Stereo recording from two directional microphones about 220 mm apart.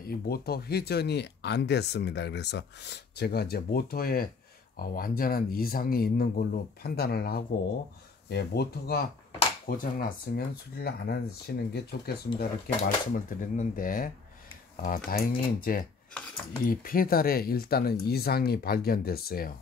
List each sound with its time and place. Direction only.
0.3 s speech: 45° left (ahead or behind)